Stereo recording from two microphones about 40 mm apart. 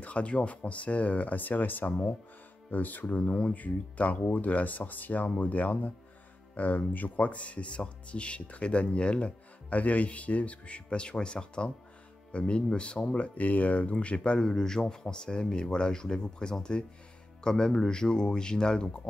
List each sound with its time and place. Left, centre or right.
0.0 s speech: left
9.7 s speech: left
14.4 s speech: centre